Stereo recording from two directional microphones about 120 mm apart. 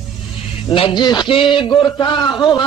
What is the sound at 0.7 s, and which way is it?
A man's voice, 50° left (ahead or behind).